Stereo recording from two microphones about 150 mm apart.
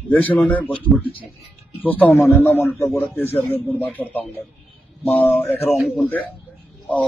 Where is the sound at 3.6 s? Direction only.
10° right (ahead or behind).